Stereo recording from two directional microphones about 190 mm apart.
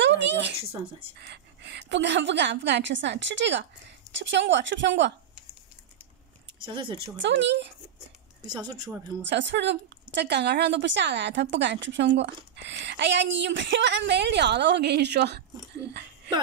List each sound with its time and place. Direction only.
0.0 s a woman's voice: 70° right (ahead or behind)
6.6 s speech: 25° right (ahead or behind)
7.2 s a woman's voice: 70° right (ahead or behind)
9.3 s a woman's voice: 70° right (ahead or behind)